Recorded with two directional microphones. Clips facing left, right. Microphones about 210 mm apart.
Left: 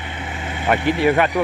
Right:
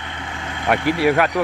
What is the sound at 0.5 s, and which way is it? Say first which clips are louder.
Speech: even; 5° left (ahead or behind).